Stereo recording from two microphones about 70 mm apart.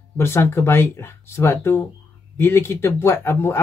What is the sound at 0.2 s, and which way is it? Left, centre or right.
Speech, left.